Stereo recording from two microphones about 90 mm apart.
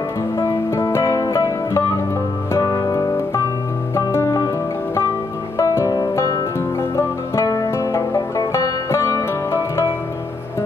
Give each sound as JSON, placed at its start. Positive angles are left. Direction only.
{"t": 0.4, "sound": "music", "side_deg": 35}
{"t": 5.6, "sound": "music", "side_deg": 40}